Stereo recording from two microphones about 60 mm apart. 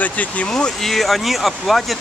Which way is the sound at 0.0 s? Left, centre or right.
Left.